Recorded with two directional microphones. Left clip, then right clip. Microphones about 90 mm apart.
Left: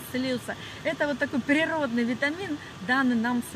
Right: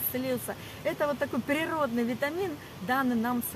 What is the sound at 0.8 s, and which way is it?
Speech, 20° right (ahead or behind).